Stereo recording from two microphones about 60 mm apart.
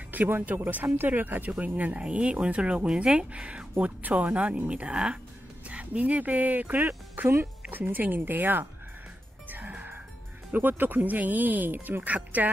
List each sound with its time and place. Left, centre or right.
0.1 s speech: right
7.2 s speech: right
9.5 s music: right
10.5 s speech: right